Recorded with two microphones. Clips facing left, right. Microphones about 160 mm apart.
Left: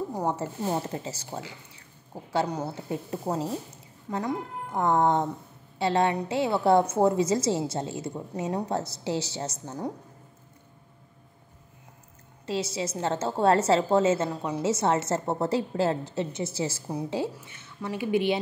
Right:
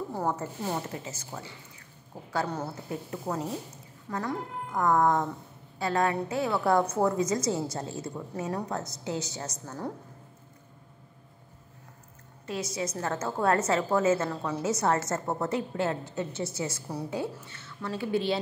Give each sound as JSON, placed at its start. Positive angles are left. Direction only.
{"t": 0.1, "sound": "speech", "side_deg": 15}
{"t": 0.4, "sound": "speech", "side_deg": 30}
{"t": 2.3, "sound": "a woman's voice", "side_deg": 20}
{"t": 12.4, "sound": "a woman's voice", "side_deg": 30}